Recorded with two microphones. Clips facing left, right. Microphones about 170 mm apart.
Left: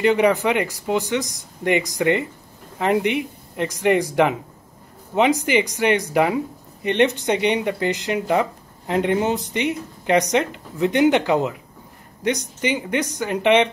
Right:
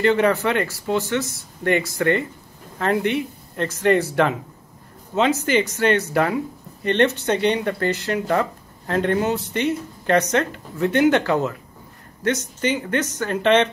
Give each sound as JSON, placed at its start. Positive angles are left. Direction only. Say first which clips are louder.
{"t": 0.0, "sound": "speech", "louder": "left 1 dB", "side_deg": 15}